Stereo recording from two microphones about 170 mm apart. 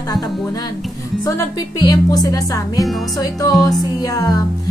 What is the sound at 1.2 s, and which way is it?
Speech, 20° left (ahead or behind).